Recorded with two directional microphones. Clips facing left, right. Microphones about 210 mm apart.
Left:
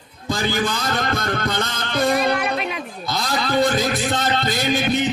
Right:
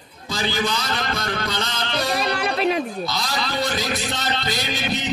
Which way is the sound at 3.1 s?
50° left (ahead or behind).